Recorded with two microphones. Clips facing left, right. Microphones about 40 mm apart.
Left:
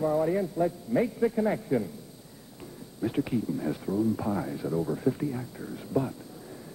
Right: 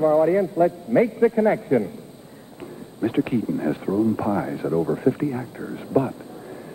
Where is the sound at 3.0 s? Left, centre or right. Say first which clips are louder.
Right 6 dB; right.